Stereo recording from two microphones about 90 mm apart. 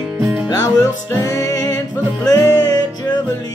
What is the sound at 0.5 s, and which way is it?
Music, 45° left (ahead or behind).